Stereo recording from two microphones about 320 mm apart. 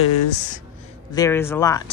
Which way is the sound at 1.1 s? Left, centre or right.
Centre.